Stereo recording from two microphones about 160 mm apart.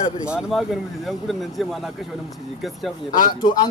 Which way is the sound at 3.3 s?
30° left (ahead or behind).